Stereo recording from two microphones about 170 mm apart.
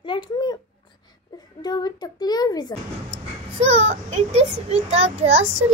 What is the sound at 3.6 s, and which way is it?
A child's voice, 40° right (ahead or behind).